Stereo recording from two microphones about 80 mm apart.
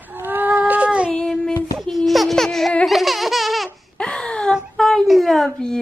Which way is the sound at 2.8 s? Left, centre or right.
Centre.